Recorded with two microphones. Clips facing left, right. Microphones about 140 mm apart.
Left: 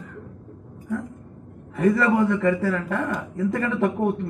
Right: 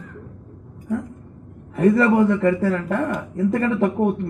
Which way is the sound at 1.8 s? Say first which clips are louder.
Right 4 dB; 45° right (ahead or behind).